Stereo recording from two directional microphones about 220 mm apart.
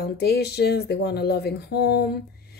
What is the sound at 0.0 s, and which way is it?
A woman's voice, 45° left (ahead or behind).